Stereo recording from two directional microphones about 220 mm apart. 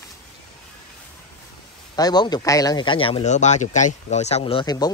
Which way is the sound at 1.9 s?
20° left (ahead or behind).